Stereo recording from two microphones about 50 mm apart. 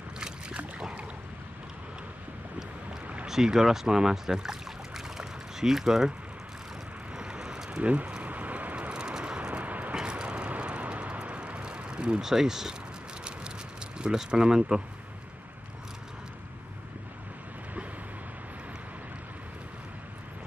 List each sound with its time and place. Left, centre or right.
0.2 s boat: right
3.3 s speech: centre
7.2 s a sound: centre
7.8 s speech: right
8.2 s a sound: right
8.9 s vehicle: centre
9.9 s vehicle: centre
13.9 s speech: centre